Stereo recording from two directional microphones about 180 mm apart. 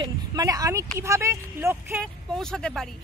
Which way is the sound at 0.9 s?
15° right (ahead or behind).